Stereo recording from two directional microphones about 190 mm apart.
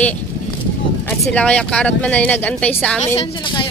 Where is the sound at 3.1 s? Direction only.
25° left (ahead or behind).